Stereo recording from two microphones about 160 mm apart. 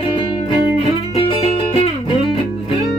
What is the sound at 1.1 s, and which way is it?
Music, 35° left (ahead or behind).